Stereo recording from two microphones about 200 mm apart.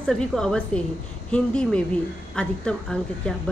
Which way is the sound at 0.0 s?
5° left (ahead or behind).